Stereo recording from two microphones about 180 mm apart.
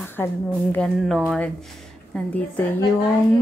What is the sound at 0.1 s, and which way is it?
A woman's voice, 10° left (ahead or behind).